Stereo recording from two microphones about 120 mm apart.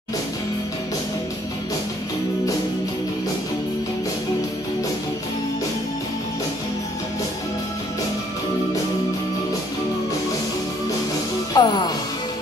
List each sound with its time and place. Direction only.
11.5 s speech: 35° left (ahead or behind)